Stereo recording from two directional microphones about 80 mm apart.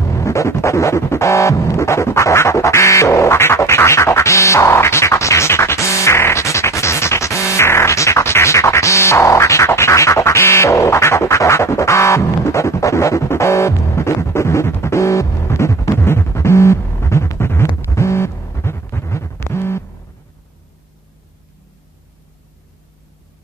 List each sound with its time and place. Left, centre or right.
0.0 s music: left